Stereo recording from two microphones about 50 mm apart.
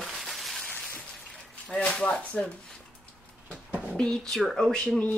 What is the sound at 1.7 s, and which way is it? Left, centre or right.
Speech, left.